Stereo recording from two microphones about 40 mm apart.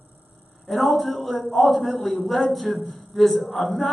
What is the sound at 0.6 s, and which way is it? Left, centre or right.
A man's voice, centre.